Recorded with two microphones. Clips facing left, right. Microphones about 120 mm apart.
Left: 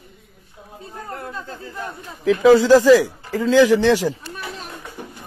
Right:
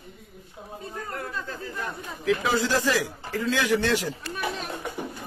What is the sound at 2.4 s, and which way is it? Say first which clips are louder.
Speech: left 13 dB; 90° left.